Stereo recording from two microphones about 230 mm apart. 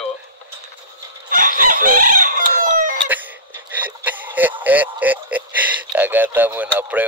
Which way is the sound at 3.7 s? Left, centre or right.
Centre.